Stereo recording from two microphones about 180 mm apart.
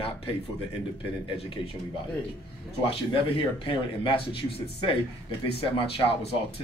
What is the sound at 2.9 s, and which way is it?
Speech, 30° left (ahead or behind).